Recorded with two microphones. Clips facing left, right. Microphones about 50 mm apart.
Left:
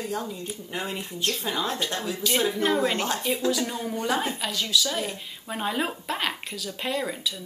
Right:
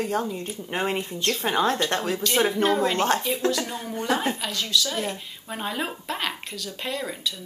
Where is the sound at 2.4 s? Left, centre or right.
Right.